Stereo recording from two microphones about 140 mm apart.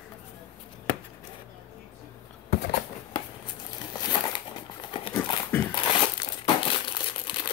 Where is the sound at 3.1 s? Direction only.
35° left (ahead or behind).